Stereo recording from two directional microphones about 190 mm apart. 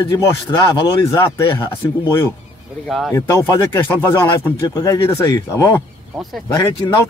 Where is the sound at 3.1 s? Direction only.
15° left (ahead or behind).